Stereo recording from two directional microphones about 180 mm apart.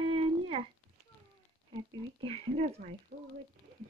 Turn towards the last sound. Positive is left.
turn(degrees=-40)  # may be behind; listen again after turning